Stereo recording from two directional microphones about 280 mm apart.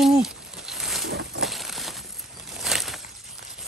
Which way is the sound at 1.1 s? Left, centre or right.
Right.